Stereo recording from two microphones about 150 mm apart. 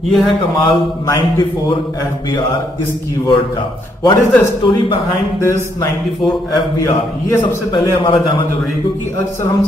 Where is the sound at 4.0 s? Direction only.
25° left (ahead or behind).